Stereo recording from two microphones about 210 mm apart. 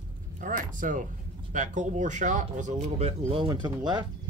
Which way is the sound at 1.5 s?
35° right (ahead or behind).